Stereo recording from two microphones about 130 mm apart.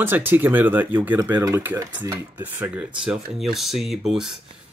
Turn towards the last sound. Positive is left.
turn(degrees=-5)  # may be behind; listen again after turning